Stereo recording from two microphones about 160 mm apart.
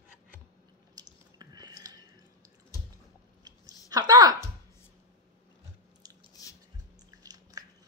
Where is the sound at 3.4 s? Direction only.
25° right (ahead or behind).